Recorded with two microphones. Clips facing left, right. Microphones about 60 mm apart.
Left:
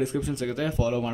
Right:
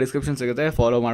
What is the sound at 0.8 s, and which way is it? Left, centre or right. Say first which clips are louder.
Speech: right 8 dB; right.